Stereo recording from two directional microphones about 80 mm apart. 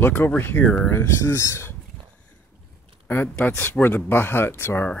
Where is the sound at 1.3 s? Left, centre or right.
Left.